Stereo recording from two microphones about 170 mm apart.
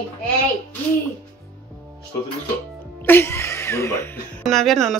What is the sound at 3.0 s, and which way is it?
Speech, 10° left (ahead or behind).